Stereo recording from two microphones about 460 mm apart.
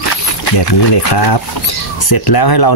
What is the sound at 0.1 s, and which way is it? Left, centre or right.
Speech, left.